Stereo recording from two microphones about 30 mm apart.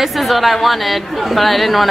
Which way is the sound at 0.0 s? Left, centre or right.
Centre.